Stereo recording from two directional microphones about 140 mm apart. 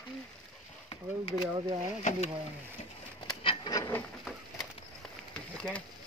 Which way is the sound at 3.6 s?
25° left (ahead or behind).